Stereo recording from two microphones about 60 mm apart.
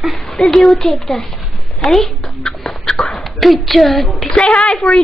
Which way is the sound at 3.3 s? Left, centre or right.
Centre.